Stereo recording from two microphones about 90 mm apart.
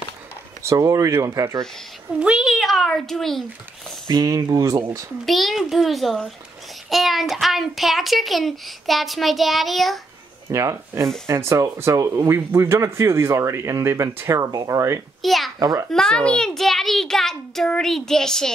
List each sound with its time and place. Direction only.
0.7 s speech: 35° right (ahead or behind)
2.1 s a child's voice: 10° right (ahead or behind)
4.1 s speech: 45° right (ahead or behind)
5.2 s a child's voice: centre (ahead or behind)
10.5 s speech: 35° right (ahead or behind)
14.4 s speech: 40° right (ahead or behind)
15.2 s a child's voice: centre (ahead or behind)